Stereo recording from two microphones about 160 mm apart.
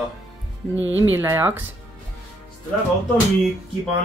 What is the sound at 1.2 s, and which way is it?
Speech, 15° right (ahead or behind).